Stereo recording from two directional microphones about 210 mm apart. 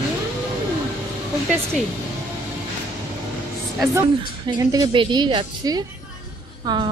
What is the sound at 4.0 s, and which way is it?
A woman's voice, 15° right (ahead or behind).